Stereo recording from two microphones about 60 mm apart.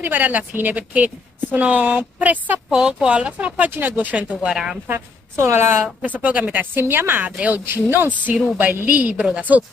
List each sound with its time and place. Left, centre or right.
0.0 s a woman's voice: right
2.7 s a woman's voice: centre
3.7 s a woman's voice: right
4.5 s a woman's voice: centre
5.4 s a woman's voice: right
6.0 s a woman's voice: right
6.7 s a woman's voice: right; by 9.4 s centre